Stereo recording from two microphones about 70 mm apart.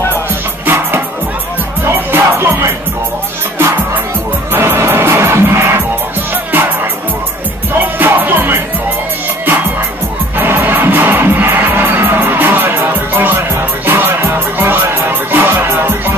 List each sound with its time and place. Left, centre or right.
0.7 s music: right
4.5 s music: right
7.7 s music: right
10.3 s music: right